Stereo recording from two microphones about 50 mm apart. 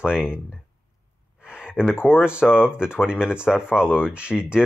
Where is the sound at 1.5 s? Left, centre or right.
Centre.